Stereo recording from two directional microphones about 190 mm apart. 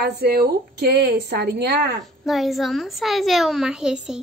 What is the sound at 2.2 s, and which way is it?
A woman's voice, centre (ahead or behind).